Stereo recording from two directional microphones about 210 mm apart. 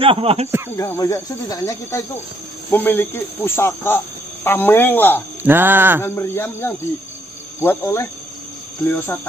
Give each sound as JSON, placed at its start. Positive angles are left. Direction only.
{"t": 0.0, "sound": "speech", "side_deg": -25}
{"t": 0.7, "sound": "speech", "side_deg": 15}
{"t": 5.4, "sound": "a sound", "side_deg": -10}
{"t": 6.0, "sound": "speech", "side_deg": 10}